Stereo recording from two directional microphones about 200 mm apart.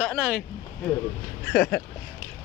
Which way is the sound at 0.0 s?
5° right (ahead or behind).